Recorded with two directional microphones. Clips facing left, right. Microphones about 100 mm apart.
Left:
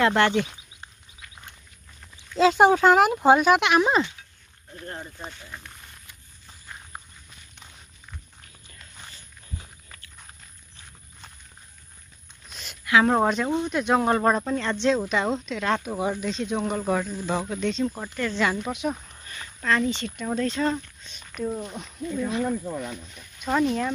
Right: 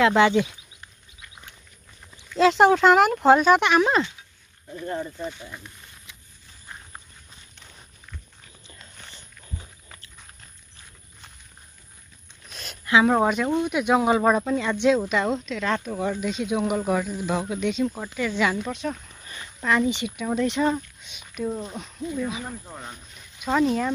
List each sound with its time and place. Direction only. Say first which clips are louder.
0.0 s speech: right 3 dB; 5° right (ahead or behind)
2.3 s speech: right 1 dB; 5° left (ahead or behind)
6.9 s walk: left 3 dB; 10° left (ahead or behind)
13.0 s speech: right 1 dB; 5° right (ahead or behind)
18.7 s speech: left 1 dB; 15° left (ahead or behind)
19.2 s speech: right 1 dB; 15° right (ahead or behind)
23.4 s speech: right 1 dB; 5° right (ahead or behind)